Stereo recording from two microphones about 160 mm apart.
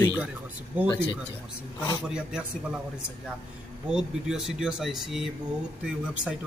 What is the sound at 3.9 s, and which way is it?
Speech, 5° right (ahead or behind).